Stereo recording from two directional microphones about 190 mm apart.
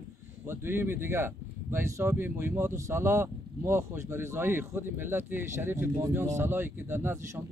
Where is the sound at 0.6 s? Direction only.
10° right (ahead or behind).